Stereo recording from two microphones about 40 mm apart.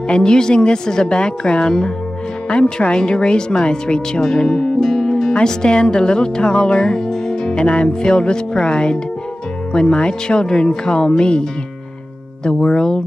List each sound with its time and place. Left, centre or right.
0.1 s a woman's voice: centre
7.6 s a woman's voice: left
12.4 s a woman's voice: left